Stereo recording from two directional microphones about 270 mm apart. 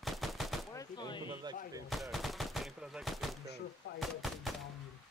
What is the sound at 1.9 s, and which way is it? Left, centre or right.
Gunshot, centre.